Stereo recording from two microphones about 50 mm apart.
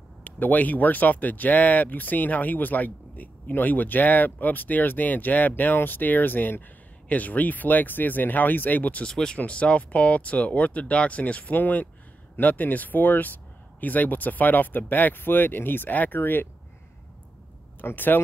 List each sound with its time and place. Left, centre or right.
0.2 s speech: left
9.0 s speech: centre; by 16.4 s left
17.8 s speech: left